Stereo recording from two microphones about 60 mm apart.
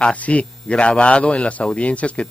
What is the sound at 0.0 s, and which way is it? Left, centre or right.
Speech, left.